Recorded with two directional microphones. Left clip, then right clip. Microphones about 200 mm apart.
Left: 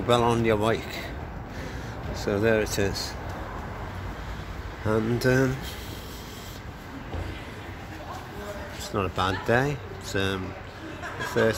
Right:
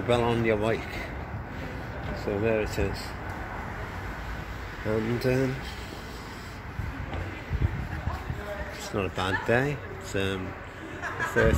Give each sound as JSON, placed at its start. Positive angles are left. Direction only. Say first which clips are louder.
{"t": 0.1, "sound": "a man's voice", "louder": "left 3 dB", "side_deg": 10}
{"t": 2.2, "sound": "speech", "louder": "left 4 dB", "side_deg": 15}
{"t": 4.8, "sound": "speech", "louder": "left 3 dB", "side_deg": 20}
{"t": 8.9, "sound": "speech", "louder": "left 2 dB", "side_deg": 5}